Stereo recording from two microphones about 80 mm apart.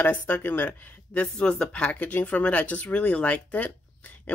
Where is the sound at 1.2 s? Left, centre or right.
Centre.